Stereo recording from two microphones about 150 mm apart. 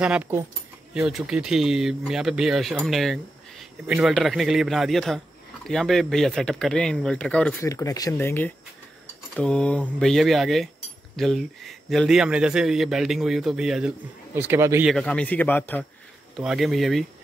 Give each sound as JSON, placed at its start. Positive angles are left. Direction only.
{"t": 0.0, "sound": "speech", "side_deg": -10}
{"t": 0.9, "sound": "speech", "side_deg": -5}
{"t": 7.6, "sound": "speech", "side_deg": 20}
{"t": 9.3, "sound": "speech", "side_deg": 5}
{"t": 14.9, "sound": "speech", "side_deg": 5}
{"t": 16.3, "sound": "speech", "side_deg": 0}